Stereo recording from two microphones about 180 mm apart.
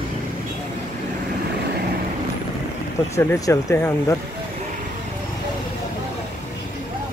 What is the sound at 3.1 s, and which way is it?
Speech, 15° left (ahead or behind).